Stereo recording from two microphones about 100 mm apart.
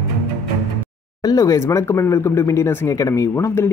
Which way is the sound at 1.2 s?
35° left (ahead or behind).